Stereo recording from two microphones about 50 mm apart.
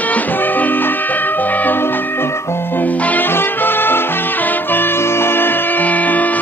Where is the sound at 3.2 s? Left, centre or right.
Left.